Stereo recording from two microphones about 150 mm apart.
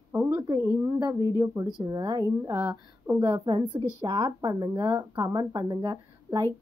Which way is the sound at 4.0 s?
30° right (ahead or behind).